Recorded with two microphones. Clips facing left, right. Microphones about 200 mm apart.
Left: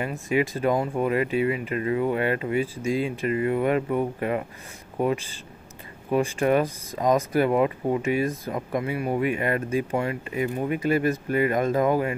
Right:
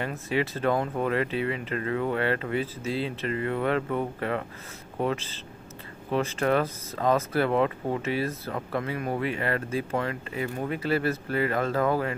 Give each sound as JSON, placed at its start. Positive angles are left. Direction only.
{"t": 0.3, "sound": "speech", "side_deg": 10}